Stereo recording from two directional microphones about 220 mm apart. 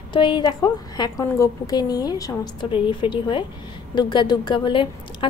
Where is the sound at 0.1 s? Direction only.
20° left (ahead or behind).